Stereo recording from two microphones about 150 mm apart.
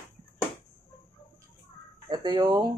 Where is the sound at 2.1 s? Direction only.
30° right (ahead or behind).